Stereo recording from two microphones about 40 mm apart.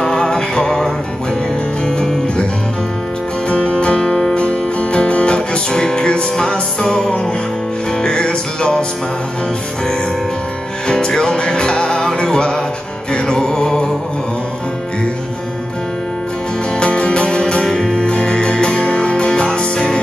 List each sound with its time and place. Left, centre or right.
0.0 s music: centre
3.4 s music: left
4.4 s music: left
10.9 s music: centre
16.7 s music: left